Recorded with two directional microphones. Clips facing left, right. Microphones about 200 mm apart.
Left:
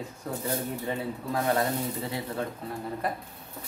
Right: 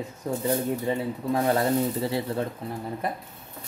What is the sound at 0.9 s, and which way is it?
Speech, 25° right (ahead or behind).